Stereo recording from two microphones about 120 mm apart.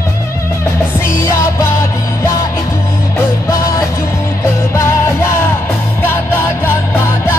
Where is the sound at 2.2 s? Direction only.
25° left (ahead or behind).